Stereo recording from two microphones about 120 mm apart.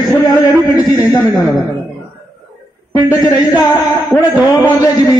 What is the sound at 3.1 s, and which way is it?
Speech, 30° left (ahead or behind).